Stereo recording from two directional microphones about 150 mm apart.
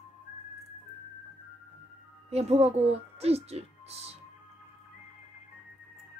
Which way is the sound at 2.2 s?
45° right (ahead or behind).